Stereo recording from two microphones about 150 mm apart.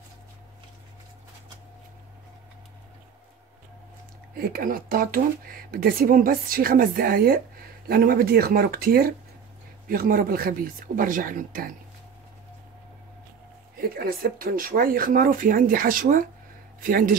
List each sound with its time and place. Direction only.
4.4 s speech: 85° right; by 11.7 s 65° right (ahead or behind)
13.7 s speech: 85° right; by 17.1 s 65° right (ahead or behind)